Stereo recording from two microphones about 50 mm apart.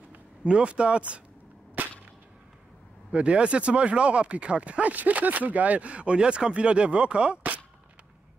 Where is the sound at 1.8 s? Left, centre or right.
Right.